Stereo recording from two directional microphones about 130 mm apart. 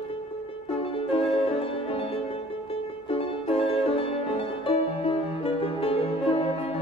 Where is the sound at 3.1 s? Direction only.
50° left (ahead or behind).